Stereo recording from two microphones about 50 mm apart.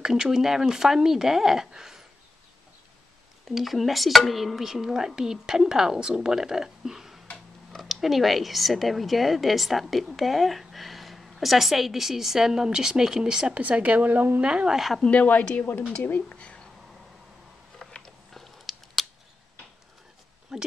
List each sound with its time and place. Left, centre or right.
0.0 s speech: centre
3.4 s speech: centre
13.6 s speech: right
14.4 s speech: right
14.7 s speech: centre
15.0 s speech: left
16.0 s speech: left
16.3 s speech: left
17.7 s mechanisms: centre
18.4 s biting: centre
20.5 s speech: centre